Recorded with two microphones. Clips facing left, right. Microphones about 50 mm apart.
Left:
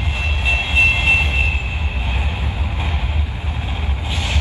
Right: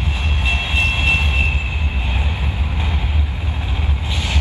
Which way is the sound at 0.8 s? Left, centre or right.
Left.